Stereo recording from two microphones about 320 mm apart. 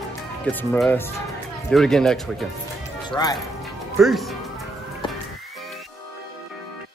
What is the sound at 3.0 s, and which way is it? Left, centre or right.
Speech, centre.